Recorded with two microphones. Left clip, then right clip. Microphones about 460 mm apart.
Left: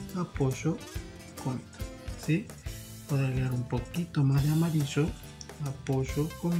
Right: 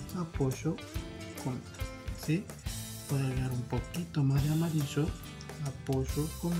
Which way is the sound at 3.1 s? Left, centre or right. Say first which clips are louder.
Left 3 dB; right.